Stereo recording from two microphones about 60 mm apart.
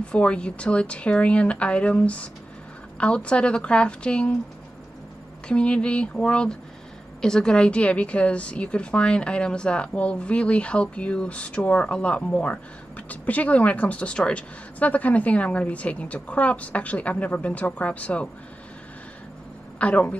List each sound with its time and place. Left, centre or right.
0.0 s a woman's voice: centre
5.5 s a woman's voice: centre
19.8 s a woman's voice: left